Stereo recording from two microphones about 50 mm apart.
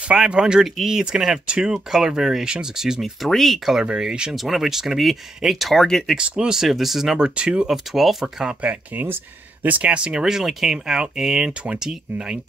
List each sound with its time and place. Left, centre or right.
0.3 s speech: centre
3.3 s speech: centre
4.0 s speech: centre
5.8 s speech: centre
6.1 s speech: centre
7.2 s speech: centre
7.6 s speech: centre
8.9 s speech: right
9.8 s speech: right
10.2 s speech: centre